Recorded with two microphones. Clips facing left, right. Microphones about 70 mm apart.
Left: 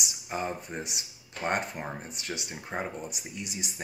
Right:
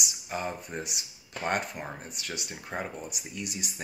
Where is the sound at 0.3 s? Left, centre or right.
Left.